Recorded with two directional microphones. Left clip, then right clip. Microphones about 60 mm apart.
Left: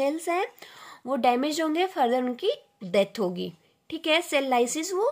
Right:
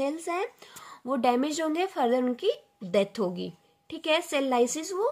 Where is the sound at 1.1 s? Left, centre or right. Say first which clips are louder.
Left 2 dB; left.